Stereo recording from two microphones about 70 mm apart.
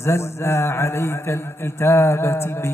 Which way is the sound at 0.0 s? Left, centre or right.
Left.